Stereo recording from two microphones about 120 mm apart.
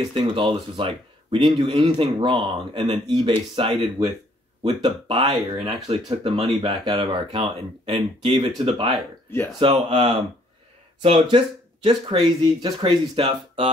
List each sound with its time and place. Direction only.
0.1 s speech: 45° right (ahead or behind)
11.0 s speech: 45° right (ahead or behind)